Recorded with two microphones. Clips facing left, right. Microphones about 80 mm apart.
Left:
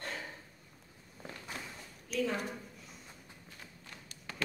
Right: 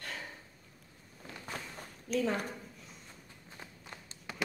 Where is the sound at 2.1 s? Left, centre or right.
Right.